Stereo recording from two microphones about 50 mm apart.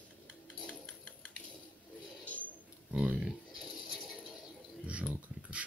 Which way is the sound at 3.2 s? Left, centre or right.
Centre.